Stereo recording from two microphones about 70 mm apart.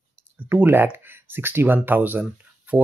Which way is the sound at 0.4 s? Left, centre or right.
Right.